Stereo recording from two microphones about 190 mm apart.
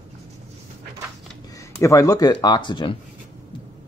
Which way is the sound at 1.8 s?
15° left (ahead or behind).